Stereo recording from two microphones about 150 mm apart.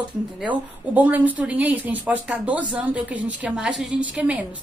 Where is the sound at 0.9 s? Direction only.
10° right (ahead or behind).